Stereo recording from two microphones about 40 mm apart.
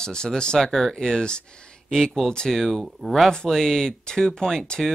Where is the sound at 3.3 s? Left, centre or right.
Centre.